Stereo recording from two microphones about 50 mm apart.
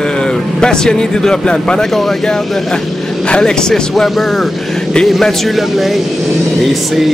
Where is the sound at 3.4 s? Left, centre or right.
Centre.